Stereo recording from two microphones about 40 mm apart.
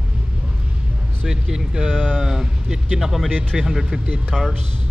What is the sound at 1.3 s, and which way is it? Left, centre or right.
Speech, centre.